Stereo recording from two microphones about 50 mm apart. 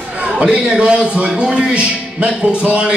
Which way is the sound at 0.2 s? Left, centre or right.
Right.